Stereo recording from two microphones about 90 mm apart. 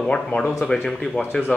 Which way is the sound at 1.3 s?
20° left (ahead or behind).